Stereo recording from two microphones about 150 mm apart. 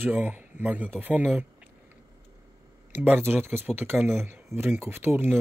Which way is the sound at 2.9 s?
15° right (ahead or behind).